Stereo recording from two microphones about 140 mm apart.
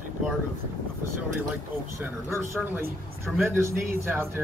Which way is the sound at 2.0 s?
20° right (ahead or behind).